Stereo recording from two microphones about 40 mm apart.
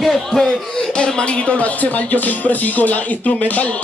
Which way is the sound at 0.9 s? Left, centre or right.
Left.